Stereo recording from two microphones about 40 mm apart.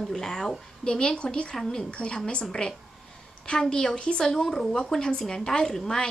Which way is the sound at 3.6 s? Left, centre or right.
Centre.